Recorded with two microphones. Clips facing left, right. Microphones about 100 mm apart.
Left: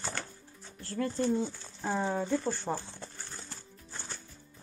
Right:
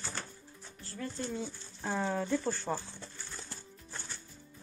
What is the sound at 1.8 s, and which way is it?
Speech, 20° left (ahead or behind).